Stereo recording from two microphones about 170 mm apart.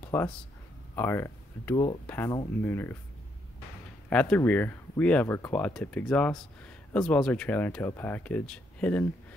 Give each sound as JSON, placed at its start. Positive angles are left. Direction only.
{"t": 0.0, "sound": "a sound", "side_deg": 15}
{"t": 0.9, "sound": "speech", "side_deg": 15}
{"t": 4.1, "sound": "speech", "side_deg": 5}